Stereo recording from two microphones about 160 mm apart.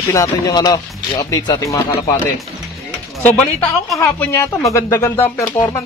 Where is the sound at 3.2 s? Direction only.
5° left (ahead or behind).